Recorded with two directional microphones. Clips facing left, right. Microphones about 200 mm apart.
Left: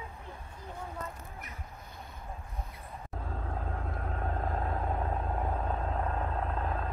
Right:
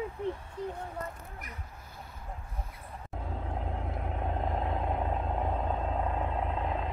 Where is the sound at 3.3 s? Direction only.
15° right (ahead or behind).